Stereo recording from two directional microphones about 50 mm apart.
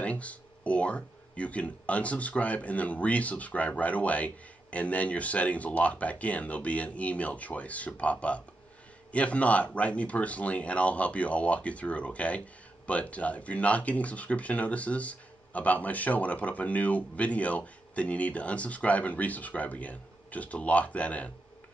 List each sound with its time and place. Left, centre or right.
0.0 s speech: left